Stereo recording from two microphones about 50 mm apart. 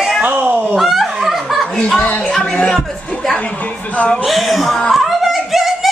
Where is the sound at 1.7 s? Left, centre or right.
Centre.